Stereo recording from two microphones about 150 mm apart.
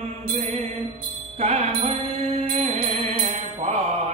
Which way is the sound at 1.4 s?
45° right (ahead or behind).